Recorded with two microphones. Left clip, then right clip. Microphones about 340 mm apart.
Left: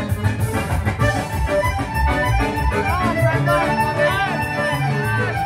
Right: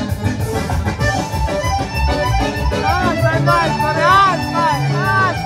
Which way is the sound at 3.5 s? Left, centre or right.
Right.